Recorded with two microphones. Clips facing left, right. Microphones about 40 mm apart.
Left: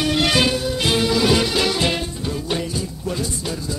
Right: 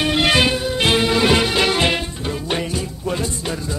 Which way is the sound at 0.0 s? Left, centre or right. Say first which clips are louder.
Right 2 dB; right.